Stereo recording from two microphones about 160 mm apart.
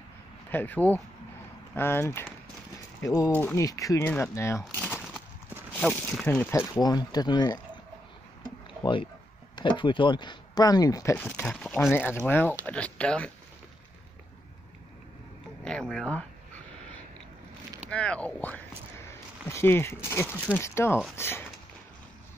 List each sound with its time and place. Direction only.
0.5 s speech: 10° left (ahead or behind); by 7.6 s 25° left (ahead or behind)
8.8 s speech: 30° left (ahead or behind)
11.1 s speech: 10° left (ahead or behind)
15.6 s speech: 5° left (ahead or behind)
17.8 s speech: 5° left (ahead or behind)